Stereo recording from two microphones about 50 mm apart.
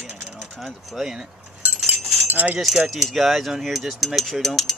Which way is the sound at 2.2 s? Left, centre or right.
Right.